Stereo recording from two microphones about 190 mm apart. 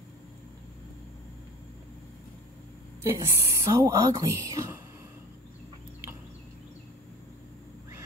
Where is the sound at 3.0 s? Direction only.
15° right (ahead or behind).